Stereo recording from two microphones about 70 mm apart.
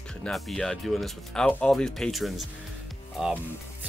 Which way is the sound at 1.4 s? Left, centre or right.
Centre.